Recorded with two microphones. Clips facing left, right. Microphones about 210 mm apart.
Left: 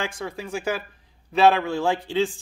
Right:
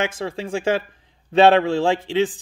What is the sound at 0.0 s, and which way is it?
A man's voice, 25° right (ahead or behind).